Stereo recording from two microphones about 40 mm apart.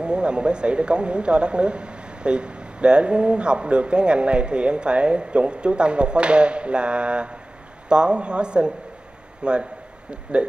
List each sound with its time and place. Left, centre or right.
0.0 s speech: right